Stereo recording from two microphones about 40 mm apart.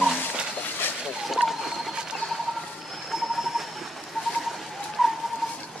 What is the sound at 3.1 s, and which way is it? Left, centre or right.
Train, centre.